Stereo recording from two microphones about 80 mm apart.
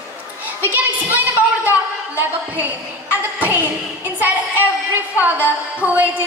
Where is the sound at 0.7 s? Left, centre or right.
Right.